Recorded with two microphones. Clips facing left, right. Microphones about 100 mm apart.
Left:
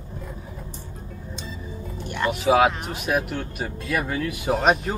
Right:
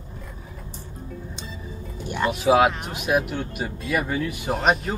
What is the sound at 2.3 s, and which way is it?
Speech, centre (ahead or behind).